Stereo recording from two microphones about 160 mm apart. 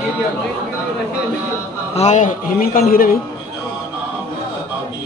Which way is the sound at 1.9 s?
50° left (ahead or behind).